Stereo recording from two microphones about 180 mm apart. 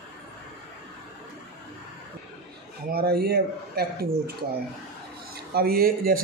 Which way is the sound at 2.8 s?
60° right (ahead or behind).